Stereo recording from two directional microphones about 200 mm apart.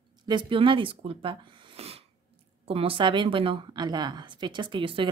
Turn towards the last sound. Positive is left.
turn(degrees=-25)  # may be behind; listen again after turning